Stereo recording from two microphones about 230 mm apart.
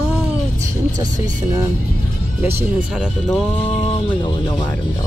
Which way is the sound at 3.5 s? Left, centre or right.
Left.